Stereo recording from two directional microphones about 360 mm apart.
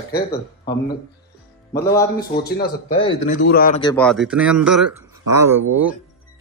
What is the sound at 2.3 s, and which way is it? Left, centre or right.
Speech, left.